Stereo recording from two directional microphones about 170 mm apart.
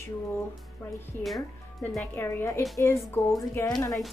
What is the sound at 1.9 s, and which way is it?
A woman's voice, 15° left (ahead or behind).